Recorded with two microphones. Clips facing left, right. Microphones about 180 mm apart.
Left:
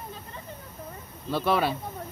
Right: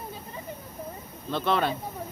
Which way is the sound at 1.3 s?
5° left (ahead or behind).